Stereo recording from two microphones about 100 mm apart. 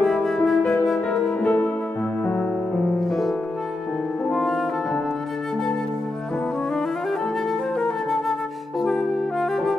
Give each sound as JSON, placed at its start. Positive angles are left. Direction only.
{"t": 0.0, "sound": "music", "side_deg": 5}
{"t": 3.1, "sound": "music", "side_deg": 0}
{"t": 7.8, "sound": "flute", "side_deg": 0}
{"t": 8.8, "sound": "music", "side_deg": 0}